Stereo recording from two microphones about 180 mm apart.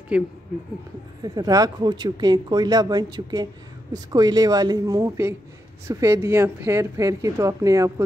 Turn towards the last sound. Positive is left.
turn(degrees=-20)  # may be behind; listen again after turning